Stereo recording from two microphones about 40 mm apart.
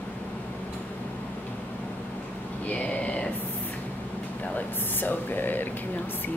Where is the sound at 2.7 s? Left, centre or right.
Left.